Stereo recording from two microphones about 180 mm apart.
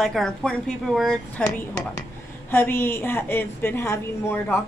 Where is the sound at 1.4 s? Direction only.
20° left (ahead or behind).